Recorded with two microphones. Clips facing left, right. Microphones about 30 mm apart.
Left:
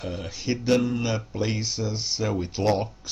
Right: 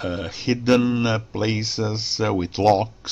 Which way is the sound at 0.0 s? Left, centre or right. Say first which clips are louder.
Right 6 dB; right.